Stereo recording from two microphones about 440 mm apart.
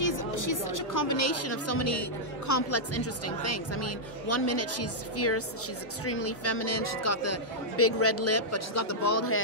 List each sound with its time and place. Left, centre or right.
0.0 s speech: left